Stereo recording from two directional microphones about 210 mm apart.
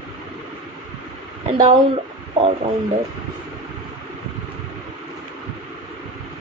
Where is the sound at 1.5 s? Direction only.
30° right (ahead or behind).